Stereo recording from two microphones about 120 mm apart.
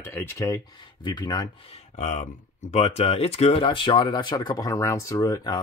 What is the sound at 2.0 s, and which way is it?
Speech, 85° left.